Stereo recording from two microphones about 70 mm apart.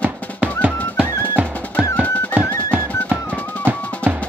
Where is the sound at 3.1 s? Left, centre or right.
Right.